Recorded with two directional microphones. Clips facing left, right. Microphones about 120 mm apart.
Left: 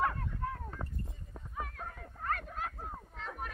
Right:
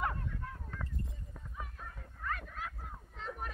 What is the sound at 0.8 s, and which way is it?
Clip-clop, 35° left (ahead or behind).